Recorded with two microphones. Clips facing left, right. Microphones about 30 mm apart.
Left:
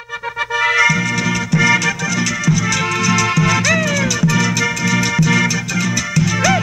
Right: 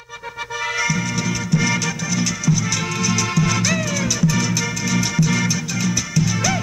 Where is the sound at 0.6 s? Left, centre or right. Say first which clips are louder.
Left 8 dB; left.